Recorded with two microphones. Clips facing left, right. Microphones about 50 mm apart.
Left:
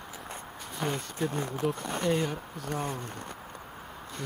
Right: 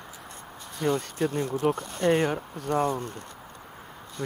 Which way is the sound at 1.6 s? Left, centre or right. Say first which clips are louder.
Right 5 dB; right.